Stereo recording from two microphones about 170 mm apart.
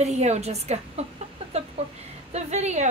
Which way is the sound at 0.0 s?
40° right (ahead or behind).